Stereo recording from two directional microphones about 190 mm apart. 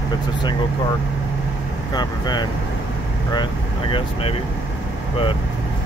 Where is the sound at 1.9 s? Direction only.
20° left (ahead or behind).